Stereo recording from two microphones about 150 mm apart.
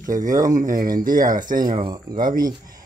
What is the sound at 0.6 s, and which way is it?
Speech, 65° right (ahead or behind).